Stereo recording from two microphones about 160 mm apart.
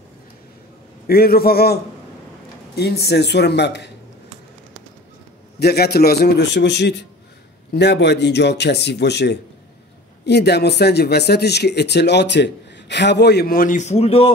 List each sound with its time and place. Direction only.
1.0 s a man's voice: 70° left (ahead or behind)
2.7 s speech: 90° left
5.6 s speech: 85° left; by 14.3 s 40° left (ahead or behind)